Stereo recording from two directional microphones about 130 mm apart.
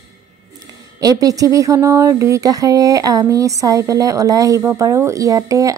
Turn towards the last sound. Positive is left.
turn(degrees=-25)  # may be behind; listen again after turning